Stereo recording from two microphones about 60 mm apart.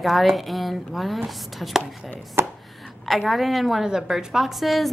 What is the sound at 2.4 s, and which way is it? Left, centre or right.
Chopping, right.